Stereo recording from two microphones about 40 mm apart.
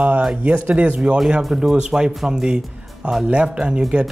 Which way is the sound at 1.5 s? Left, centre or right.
Centre.